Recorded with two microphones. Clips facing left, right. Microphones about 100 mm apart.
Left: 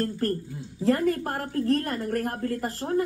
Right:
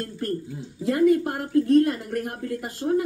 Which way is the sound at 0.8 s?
45° left (ahead or behind).